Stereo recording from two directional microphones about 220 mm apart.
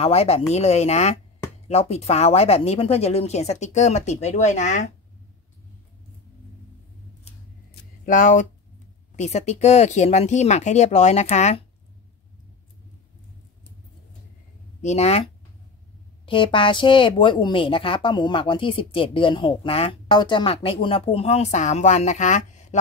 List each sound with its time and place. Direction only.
0.0 s speech: 25° left (ahead or behind)
8.0 s speech: 35° left (ahead or behind)
14.8 s speech: 30° left (ahead or behind)
16.3 s speech: 25° left (ahead or behind)